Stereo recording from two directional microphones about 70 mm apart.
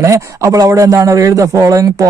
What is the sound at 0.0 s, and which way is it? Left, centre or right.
A man's voice, right.